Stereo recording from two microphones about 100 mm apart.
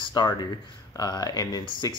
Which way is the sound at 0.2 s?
45° left (ahead or behind).